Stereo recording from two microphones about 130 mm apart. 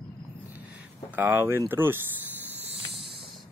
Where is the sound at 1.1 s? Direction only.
20° right (ahead or behind).